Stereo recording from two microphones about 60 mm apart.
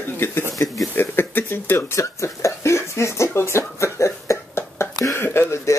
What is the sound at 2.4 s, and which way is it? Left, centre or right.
Speech, left.